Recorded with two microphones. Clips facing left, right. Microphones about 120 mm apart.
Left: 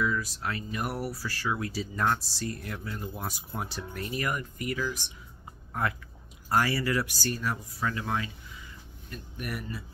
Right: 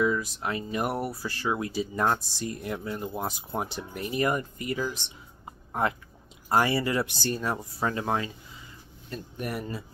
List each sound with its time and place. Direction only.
0.0 s speech: 20° right (ahead or behind)